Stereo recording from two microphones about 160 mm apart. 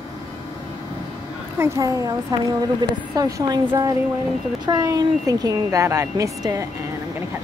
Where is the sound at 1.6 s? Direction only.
20° right (ahead or behind).